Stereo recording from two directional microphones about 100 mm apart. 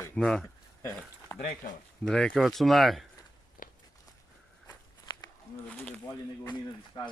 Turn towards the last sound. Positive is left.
turn(degrees=50)  # may be behind; listen again after turning